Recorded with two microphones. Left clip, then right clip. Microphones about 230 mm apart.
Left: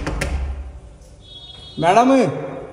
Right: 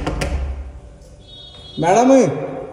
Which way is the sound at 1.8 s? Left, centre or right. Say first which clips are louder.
Even; left.